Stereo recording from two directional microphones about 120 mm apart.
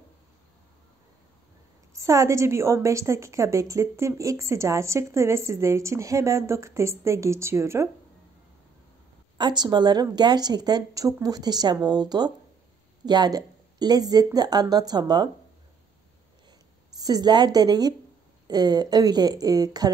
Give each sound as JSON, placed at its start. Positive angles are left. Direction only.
{"t": 2.0, "sound": "a woman's voice", "side_deg": -25}
{"t": 9.4, "sound": "speech", "side_deg": -35}
{"t": 17.0, "sound": "speech", "side_deg": -35}